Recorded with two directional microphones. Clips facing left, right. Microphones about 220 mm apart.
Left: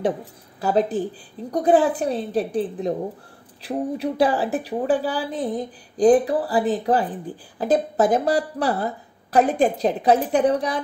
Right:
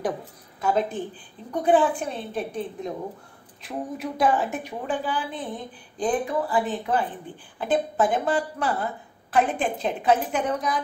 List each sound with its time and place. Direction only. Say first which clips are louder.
0.6 s a woman's voice: left 4 dB; 35° left (ahead or behind)